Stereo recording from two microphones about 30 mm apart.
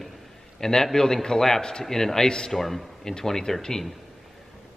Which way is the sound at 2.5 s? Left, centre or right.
Centre.